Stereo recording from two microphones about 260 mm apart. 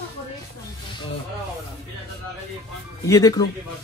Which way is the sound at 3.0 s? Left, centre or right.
Centre.